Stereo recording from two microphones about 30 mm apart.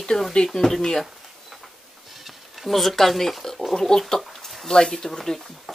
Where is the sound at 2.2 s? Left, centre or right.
Centre.